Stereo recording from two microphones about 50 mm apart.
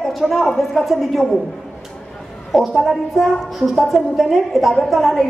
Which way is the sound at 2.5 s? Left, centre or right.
Centre.